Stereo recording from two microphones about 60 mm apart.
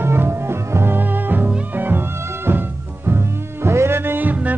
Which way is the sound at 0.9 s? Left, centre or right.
Right.